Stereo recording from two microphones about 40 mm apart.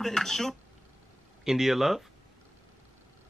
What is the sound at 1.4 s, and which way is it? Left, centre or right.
Speech, centre.